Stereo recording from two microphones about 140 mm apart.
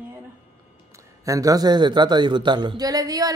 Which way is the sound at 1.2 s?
25° right (ahead or behind).